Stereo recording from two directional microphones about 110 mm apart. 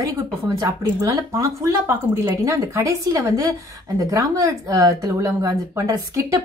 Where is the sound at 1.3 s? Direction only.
25° right (ahead or behind).